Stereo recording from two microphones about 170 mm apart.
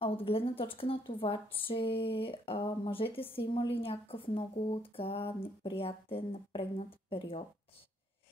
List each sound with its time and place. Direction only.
0.0 s a woman's voice: 35° left (ahead or behind)